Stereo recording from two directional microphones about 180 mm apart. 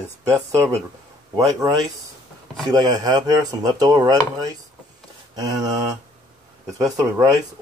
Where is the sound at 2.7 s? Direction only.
20° right (ahead or behind).